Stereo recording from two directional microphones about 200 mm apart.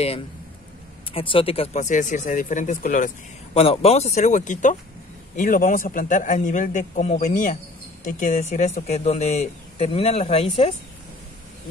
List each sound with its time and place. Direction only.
1.1 s speech: 25° left (ahead or behind)
3.5 s speech: 30° left (ahead or behind)